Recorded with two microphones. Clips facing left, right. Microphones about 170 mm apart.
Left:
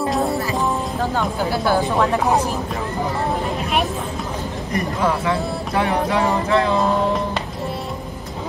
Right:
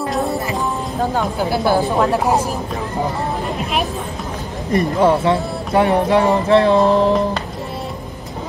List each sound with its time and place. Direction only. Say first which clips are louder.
0.1 s music: right 2 dB; centre (ahead or behind)
1.6 s speech: right 2 dB; 10° right (ahead or behind)
4.7 s music: right 7 dB; 30° right (ahead or behind)